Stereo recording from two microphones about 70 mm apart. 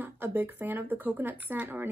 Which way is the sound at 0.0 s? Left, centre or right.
Right.